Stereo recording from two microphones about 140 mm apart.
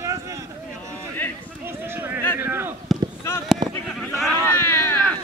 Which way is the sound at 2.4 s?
15° right (ahead or behind).